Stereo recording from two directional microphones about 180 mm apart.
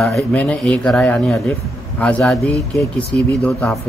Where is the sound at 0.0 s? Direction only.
5° left (ahead or behind).